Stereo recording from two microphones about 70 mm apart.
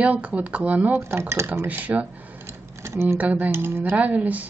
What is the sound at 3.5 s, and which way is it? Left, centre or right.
Speech, right.